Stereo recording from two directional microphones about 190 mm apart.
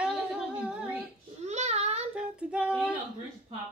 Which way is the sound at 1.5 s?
35° right (ahead or behind).